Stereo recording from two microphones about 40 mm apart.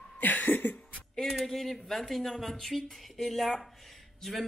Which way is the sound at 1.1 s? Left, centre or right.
Centre.